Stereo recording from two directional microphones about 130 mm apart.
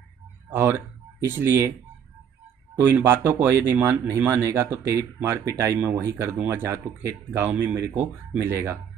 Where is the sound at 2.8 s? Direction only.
15° right (ahead or behind).